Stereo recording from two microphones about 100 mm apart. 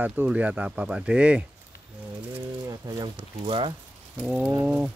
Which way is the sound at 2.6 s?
40° right (ahead or behind).